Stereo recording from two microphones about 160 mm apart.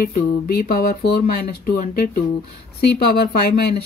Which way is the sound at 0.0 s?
70° left (ahead or behind).